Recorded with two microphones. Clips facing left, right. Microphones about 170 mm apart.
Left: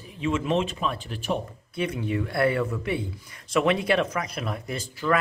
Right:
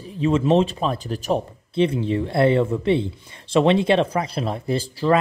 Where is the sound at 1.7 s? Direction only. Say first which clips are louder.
Right 8 dB; 30° right (ahead or behind).